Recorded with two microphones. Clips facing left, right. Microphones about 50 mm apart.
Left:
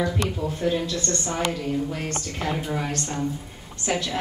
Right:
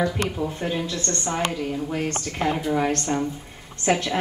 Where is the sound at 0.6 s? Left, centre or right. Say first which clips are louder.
Left 2 dB; right.